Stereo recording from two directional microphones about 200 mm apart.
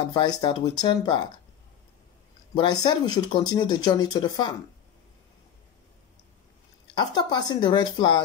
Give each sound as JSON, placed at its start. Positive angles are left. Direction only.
{"t": 0.0, "sound": "speech", "side_deg": 20}
{"t": 2.5, "sound": "speech", "side_deg": 20}
{"t": 7.0, "sound": "speech", "side_deg": 20}